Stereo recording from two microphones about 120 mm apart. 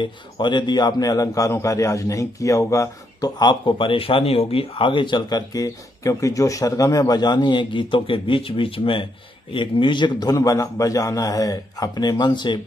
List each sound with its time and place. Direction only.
0.0 s a man's voice: 40° left (ahead or behind)